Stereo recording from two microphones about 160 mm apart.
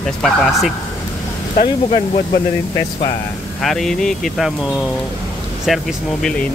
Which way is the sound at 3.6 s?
Centre (ahead or behind).